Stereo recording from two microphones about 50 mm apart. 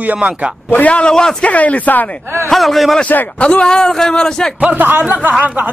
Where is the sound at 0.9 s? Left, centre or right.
Left.